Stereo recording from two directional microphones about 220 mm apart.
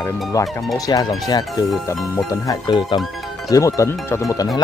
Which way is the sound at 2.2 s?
15° left (ahead or behind).